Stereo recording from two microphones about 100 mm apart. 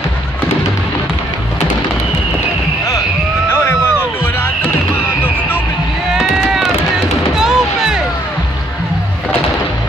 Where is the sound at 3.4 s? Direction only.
25° left (ahead or behind).